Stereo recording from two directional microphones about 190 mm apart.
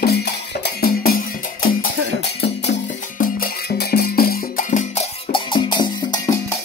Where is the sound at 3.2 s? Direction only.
50° left (ahead or behind).